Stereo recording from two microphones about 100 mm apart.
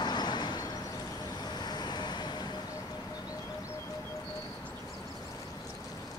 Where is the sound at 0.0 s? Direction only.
45° left (ahead or behind).